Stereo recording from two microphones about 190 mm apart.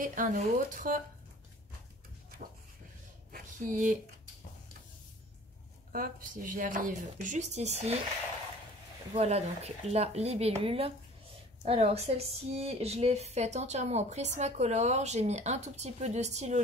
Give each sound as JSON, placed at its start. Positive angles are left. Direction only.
{"t": 0.0, "sound": "speech", "side_deg": -45}
{"t": 3.3, "sound": "a sound", "side_deg": -45}
{"t": 5.9, "sound": "speech", "side_deg": -45}
{"t": 9.1, "sound": "a woman's voice", "side_deg": -35}